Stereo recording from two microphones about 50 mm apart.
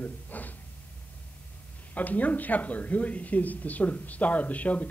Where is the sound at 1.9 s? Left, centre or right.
Left.